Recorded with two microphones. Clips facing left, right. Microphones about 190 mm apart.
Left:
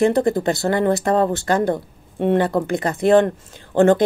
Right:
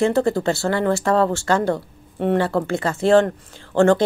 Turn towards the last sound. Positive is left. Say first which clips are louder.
# left 1 dB
turn(degrees=20)  # may be behind; listen again after turning